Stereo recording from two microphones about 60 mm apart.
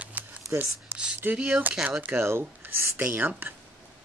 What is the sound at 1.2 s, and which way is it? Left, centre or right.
Speech, right.